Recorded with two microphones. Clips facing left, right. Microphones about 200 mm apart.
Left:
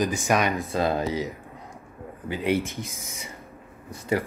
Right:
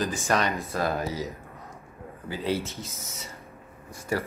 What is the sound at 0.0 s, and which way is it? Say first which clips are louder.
Speech: left 3 dB; 15° left (ahead or behind).